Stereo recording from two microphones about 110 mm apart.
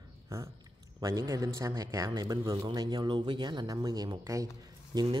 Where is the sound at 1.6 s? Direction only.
30° right (ahead or behind).